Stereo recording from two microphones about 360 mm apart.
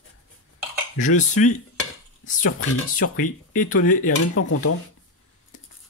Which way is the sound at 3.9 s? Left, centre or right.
Left.